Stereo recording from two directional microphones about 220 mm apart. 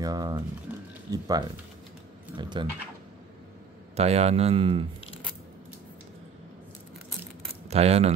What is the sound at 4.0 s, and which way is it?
Speech, 30° right (ahead or behind).